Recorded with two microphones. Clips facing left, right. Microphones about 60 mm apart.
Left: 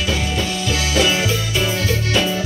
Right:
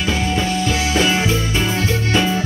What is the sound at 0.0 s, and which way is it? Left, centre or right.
Music, right.